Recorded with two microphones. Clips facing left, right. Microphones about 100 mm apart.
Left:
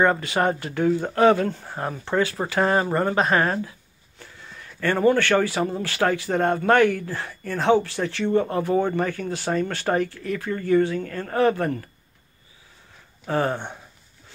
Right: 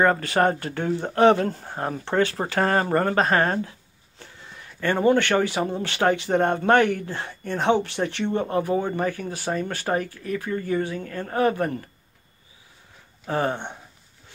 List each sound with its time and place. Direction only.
0.0 s speech: 40° right (ahead or behind)
0.9 s speech: 25° right (ahead or behind)
4.2 s speech: 25° right (ahead or behind)
9.9 s speech: 35° right (ahead or behind)
10.7 s speech: 15° right (ahead or behind)
13.3 s speech: 20° right (ahead or behind)